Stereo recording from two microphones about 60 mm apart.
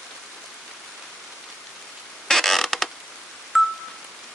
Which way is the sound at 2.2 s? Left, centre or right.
Centre.